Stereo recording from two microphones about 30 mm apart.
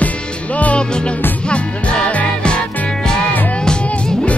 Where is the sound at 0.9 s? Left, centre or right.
Left.